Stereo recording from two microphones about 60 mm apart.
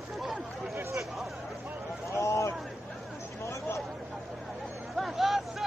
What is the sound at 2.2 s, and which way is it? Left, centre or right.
Vehicle, left.